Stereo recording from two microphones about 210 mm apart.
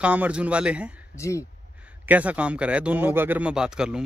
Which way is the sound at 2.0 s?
5° right (ahead or behind).